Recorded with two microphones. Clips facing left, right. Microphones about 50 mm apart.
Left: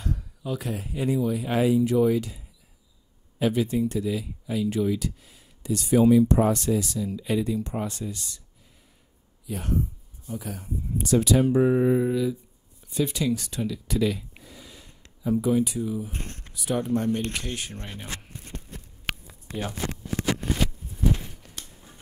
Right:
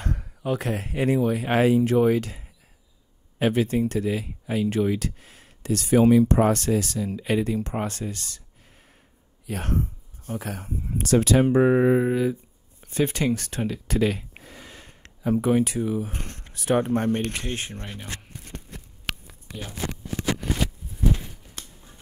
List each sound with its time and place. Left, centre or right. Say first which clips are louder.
0.0 s speech: right 3 dB; right
9.5 s speech: right 1 dB; right
16.2 s speech: even; right
17.8 s speech: right 1 dB; centre
19.4 s a sound: left 6 dB; left